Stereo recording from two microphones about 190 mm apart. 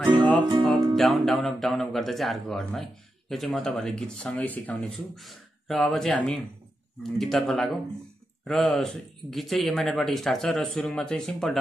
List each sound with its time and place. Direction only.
0.4 s music: 20° right (ahead or behind)
0.7 s speech: centre (ahead or behind)